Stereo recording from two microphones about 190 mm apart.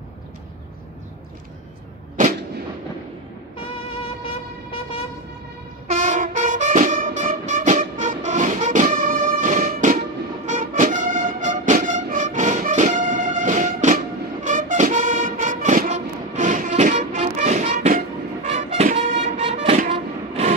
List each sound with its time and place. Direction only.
2.2 s artillery fire: 45° right (ahead or behind)
5.9 s music: 40° right (ahead or behind)